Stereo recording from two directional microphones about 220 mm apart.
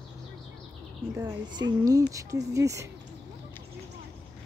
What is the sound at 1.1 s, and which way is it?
A woman's voice, 20° right (ahead or behind).